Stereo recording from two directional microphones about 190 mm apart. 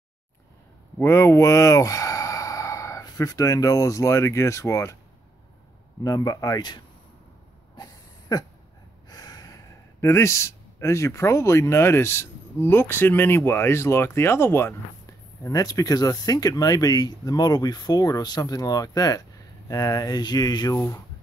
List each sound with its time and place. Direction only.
0.9 s speech: 15° left (ahead or behind)
6.0 s speech: 20° left (ahead or behind)
7.7 s a sound: 20° left (ahead or behind)
9.1 s speech: 20° left (ahead or behind)